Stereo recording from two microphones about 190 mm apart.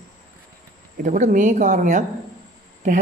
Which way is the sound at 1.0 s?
40° right (ahead or behind).